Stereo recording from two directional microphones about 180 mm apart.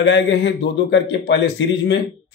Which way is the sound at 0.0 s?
90° left.